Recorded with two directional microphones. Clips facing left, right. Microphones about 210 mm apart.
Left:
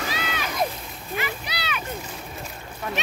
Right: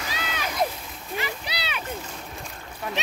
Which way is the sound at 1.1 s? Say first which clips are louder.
Left 1 dB; 30° right (ahead or behind).